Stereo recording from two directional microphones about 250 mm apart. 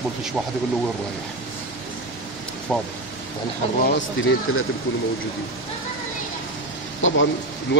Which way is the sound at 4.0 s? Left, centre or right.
Left.